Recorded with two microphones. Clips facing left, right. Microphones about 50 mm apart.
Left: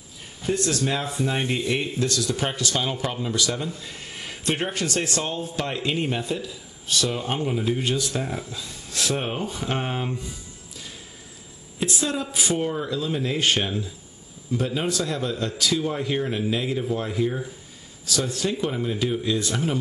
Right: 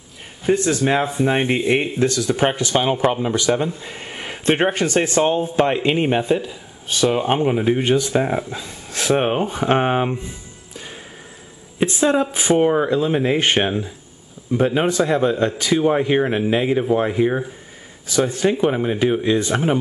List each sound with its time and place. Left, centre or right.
0.5 s speech: right